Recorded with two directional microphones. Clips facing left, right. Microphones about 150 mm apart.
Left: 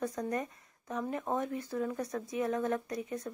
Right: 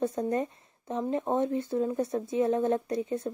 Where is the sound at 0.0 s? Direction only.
25° right (ahead or behind).